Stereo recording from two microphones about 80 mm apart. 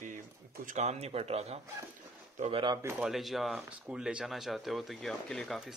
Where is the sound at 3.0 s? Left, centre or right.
Centre.